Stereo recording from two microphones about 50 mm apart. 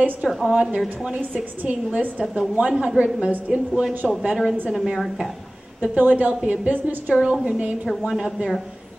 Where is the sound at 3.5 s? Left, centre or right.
Right.